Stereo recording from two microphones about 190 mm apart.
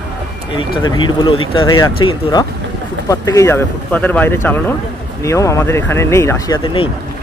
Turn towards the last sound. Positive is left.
turn(degrees=30)  # may be behind; listen again after turning